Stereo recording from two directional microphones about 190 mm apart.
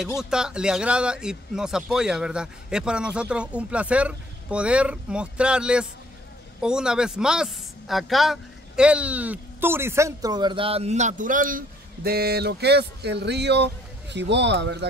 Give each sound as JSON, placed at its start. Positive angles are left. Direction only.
{"t": 0.2, "sound": "a man's voice", "side_deg": -5}